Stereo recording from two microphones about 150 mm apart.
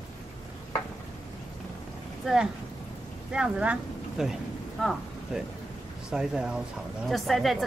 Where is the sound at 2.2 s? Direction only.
5° right (ahead or behind).